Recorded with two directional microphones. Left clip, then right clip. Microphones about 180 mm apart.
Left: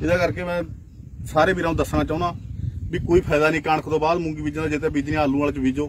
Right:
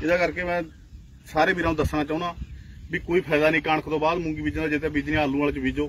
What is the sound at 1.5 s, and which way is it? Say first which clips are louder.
Speech: left 2 dB; 15° left (ahead or behind).